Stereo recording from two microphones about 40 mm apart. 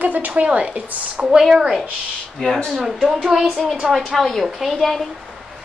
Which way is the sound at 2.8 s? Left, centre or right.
Centre.